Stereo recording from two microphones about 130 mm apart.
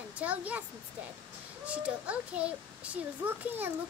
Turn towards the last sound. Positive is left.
turn(degrees=-10)  # may be behind; listen again after turning